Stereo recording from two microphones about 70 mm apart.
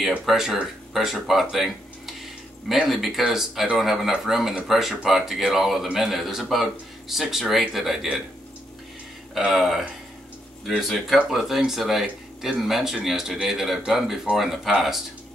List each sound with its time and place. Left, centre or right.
0.3 s speech: centre
9.3 s speech: centre